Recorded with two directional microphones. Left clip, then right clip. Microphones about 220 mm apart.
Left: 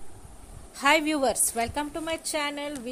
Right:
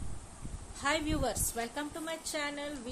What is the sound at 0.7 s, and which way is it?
A woman's voice, 35° left (ahead or behind).